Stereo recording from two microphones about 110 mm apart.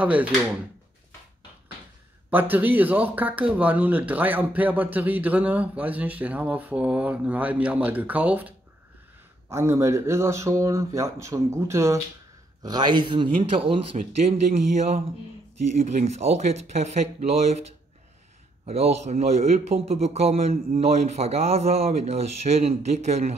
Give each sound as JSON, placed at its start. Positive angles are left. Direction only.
{"t": 0.0, "sound": "speech", "side_deg": -15}
{"t": 2.3, "sound": "speech", "side_deg": -15}
{"t": 9.5, "sound": "speech", "side_deg": -25}
{"t": 12.6, "sound": "speech", "side_deg": -40}
{"t": 15.8, "sound": "a man's voice", "side_deg": -80}
{"t": 18.7, "sound": "a man's voice", "side_deg": -70}